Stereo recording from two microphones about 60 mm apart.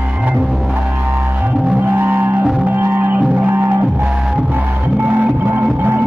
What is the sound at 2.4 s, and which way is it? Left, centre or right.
Music, centre.